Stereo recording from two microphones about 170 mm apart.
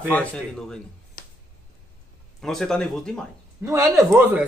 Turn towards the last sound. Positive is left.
turn(degrees=-10)  # may be behind; listen again after turning